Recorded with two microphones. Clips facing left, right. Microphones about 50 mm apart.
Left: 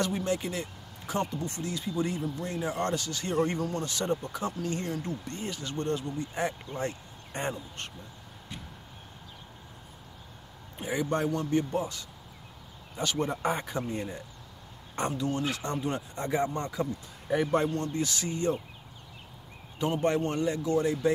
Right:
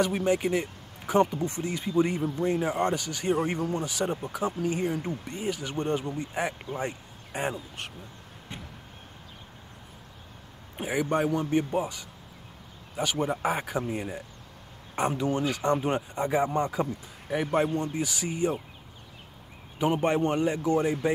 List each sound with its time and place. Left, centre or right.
0.0 s a man's voice: centre
6.7 s speech: centre
10.8 s a man's voice: centre
16.2 s a man's voice: centre
19.8 s speech: right